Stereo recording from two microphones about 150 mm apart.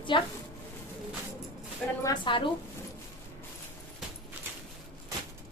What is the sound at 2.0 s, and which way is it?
Speech, 30° left (ahead or behind).